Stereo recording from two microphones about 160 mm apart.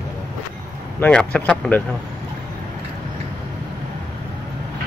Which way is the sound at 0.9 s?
10° left (ahead or behind).